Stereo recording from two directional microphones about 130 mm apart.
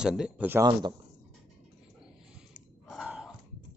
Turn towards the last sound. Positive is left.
turn(degrees=-5)  # may be behind; listen again after turning